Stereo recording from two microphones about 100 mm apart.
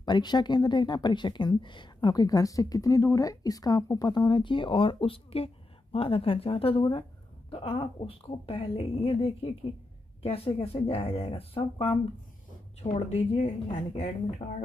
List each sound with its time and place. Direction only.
0.0 s a woman's voice: 45° left (ahead or behind); by 12.0 s 70° left (ahead or behind)
12.8 s speech: 90° left